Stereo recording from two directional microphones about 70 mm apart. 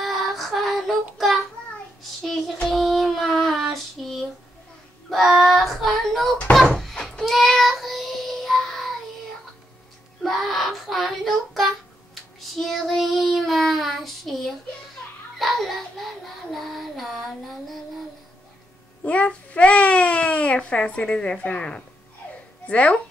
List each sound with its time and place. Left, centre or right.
0.0 s child singing: centre
10.2 s child singing: centre
15.3 s a sound: centre
16.5 s child singing: centre
19.0 s a child's voice: centre